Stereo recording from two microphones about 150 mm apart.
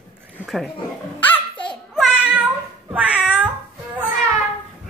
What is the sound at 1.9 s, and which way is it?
Meow, 5° right (ahead or behind).